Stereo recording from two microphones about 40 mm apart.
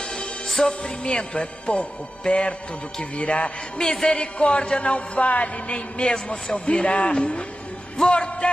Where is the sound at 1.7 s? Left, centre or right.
Left.